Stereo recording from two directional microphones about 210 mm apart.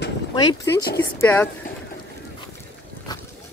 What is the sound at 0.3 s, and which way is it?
Speech, 20° left (ahead or behind).